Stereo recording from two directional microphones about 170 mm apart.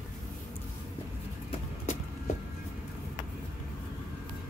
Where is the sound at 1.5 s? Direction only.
45° left (ahead or behind).